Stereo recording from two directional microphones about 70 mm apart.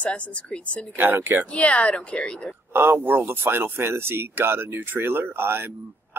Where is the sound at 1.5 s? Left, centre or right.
Centre.